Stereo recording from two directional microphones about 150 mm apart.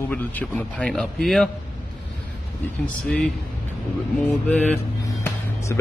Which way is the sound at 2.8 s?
5° left (ahead or behind).